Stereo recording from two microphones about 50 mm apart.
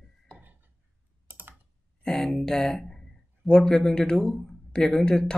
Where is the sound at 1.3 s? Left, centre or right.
Right.